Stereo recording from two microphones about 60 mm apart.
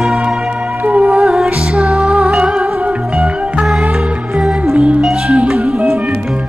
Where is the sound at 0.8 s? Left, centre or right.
Right.